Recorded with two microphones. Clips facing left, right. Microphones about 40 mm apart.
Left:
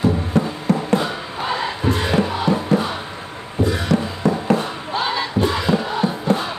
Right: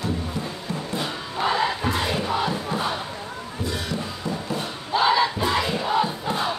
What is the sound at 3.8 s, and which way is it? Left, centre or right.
Music, left.